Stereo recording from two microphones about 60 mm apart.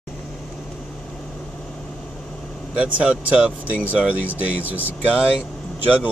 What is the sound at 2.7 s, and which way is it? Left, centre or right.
Speech, right.